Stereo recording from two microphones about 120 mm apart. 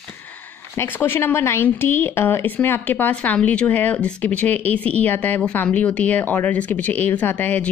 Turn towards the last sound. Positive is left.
turn(degrees=15)  # may be behind; listen again after turning